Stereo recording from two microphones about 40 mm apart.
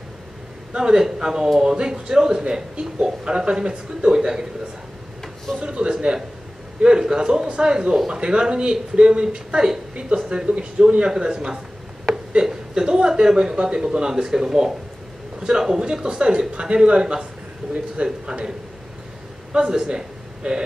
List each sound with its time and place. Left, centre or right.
0.7 s a man's voice: centre
5.6 s a man's voice: right
19.5 s a man's voice: right